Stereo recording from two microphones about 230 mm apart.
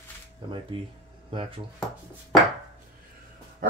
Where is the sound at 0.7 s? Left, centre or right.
Right.